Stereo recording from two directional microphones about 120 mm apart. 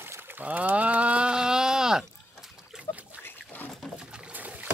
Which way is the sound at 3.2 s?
15° left (ahead or behind).